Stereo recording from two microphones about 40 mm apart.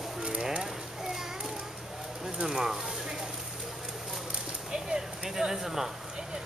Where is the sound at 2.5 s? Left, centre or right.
Centre.